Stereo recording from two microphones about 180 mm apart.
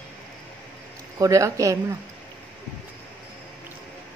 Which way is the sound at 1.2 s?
15° right (ahead or behind).